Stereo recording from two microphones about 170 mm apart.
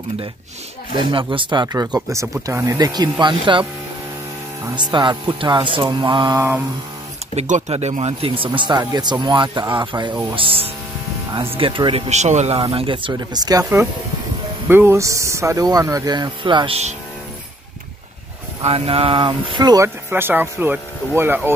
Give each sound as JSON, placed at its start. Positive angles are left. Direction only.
{"t": 0.9, "sound": "speech", "side_deg": -30}
{"t": 4.7, "sound": "speech", "side_deg": -25}
{"t": 7.3, "sound": "speech", "side_deg": -45}
{"t": 12.1, "sound": "speech", "side_deg": -40}
{"t": 14.7, "sound": "speech", "side_deg": -15}
{"t": 18.6, "sound": "speech", "side_deg": -35}